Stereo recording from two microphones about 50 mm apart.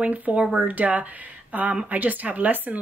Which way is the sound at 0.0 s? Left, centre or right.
Right.